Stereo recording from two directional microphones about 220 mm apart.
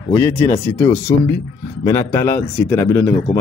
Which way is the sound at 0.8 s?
10° left (ahead or behind).